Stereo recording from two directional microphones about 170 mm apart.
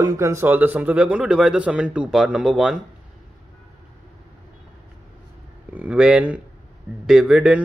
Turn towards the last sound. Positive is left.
turn(degrees=-5)  # may be behind; listen again after turning